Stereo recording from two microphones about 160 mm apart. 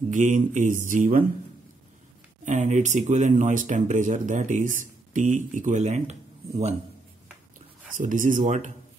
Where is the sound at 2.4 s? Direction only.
50° right (ahead or behind).